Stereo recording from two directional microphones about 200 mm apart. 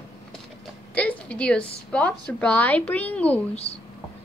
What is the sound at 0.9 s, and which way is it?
A woman's voice, 5° left (ahead or behind).